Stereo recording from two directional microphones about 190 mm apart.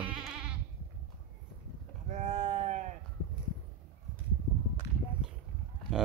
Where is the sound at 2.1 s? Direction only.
40° right (ahead or behind).